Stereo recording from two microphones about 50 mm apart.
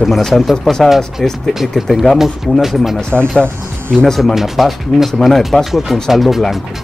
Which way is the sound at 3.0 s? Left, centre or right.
Left.